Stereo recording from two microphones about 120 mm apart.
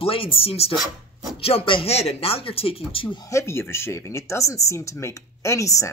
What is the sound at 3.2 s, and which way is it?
Speech, 25° left (ahead or behind).